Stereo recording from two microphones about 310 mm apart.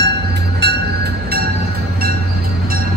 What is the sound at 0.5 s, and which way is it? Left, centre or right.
Music, right.